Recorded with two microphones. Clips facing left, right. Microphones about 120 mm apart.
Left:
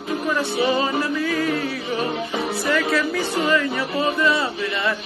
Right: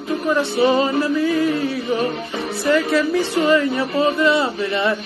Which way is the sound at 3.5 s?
30° right (ahead or behind).